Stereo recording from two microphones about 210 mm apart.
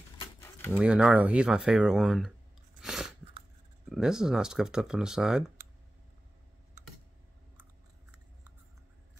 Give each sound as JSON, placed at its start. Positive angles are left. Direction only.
{"t": 0.4, "sound": "a sound", "side_deg": 10}
{"t": 0.7, "sound": "speech", "side_deg": -5}
{"t": 2.8, "sound": "chewing", "side_deg": 0}
{"t": 3.9, "sound": "speech", "side_deg": -5}